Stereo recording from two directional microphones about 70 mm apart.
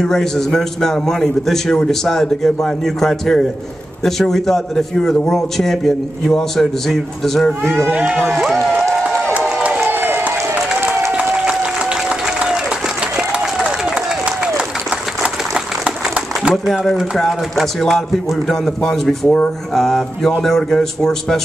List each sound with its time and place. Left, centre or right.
0.0 s a man's voice: centre
7.9 s speech: centre
9.8 s applause: right
11.1 s a sound: centre
16.6 s a man's voice: centre